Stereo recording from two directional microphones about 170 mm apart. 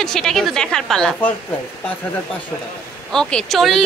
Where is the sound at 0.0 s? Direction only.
Centre (ahead or behind).